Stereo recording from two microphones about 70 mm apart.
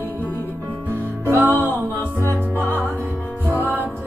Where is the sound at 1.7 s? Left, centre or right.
Left.